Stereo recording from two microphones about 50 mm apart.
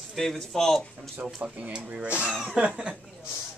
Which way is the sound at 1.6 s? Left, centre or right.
Right.